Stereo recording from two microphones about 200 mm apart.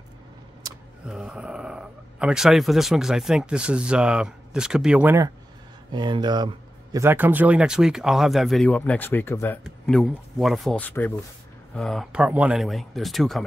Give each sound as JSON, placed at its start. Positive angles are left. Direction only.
{"t": 0.7, "sound": "vehicle", "side_deg": -15}
{"t": 1.0, "sound": "speech", "side_deg": -5}